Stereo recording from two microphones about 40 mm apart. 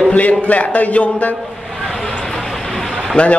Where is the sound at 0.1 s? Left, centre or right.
Left.